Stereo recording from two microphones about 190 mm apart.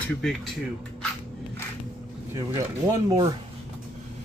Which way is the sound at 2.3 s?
20° right (ahead or behind).